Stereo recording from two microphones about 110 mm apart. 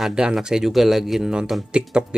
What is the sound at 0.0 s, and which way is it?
Speech, 5° right (ahead or behind).